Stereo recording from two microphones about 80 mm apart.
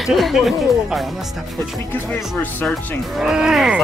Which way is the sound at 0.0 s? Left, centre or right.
Centre.